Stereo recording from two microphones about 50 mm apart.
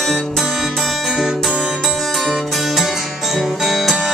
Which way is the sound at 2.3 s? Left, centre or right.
Centre.